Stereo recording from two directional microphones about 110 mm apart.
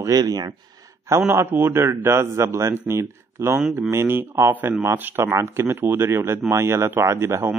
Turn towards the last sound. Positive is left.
turn(degrees=-25)  # may be behind; listen again after turning